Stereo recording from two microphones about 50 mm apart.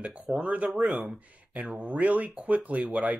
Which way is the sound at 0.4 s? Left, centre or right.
Right.